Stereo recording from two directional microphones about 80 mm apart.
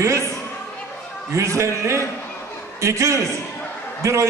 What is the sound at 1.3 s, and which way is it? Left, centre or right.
A man's voice, right.